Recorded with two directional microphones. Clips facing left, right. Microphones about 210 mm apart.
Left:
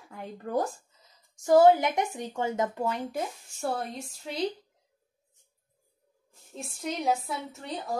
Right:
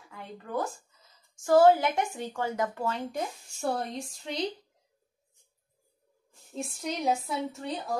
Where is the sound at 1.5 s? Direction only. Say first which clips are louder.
Left 1 dB; 20° left (ahead or behind).